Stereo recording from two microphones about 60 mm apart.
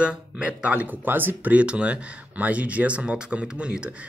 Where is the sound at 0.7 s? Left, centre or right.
Right.